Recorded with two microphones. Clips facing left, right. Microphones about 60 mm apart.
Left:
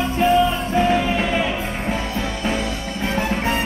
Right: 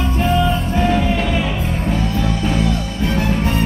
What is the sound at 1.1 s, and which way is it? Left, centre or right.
Music, left.